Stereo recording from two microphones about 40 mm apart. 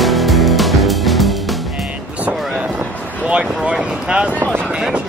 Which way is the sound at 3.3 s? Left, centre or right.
Right.